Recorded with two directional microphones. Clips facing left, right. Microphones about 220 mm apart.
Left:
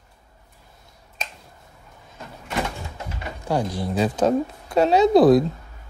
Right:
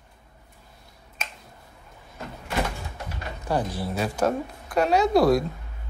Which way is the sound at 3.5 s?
15° left (ahead or behind).